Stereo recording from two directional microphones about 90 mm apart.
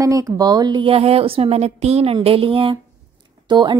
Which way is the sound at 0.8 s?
90° right.